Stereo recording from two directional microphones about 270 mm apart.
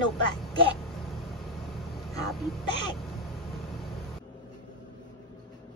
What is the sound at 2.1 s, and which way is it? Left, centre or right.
Throat clearing, centre.